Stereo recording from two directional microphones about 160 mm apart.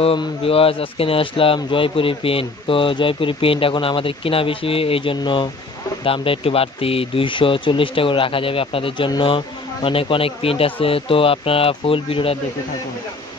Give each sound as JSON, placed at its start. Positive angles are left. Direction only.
{"t": 0.0, "sound": "speech", "side_deg": 35}